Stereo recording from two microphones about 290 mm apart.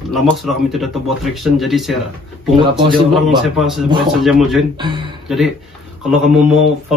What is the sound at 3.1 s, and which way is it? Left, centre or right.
Speech, centre.